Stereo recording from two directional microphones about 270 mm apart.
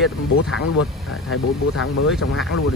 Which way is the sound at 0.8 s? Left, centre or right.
Left.